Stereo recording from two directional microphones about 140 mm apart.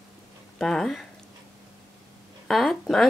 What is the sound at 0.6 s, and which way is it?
Speech, 5° left (ahead or behind).